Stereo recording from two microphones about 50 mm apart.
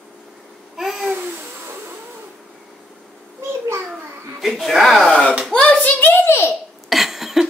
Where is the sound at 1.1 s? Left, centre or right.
Right.